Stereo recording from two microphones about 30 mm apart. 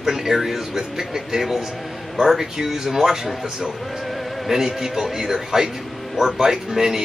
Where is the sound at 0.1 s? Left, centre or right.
Centre.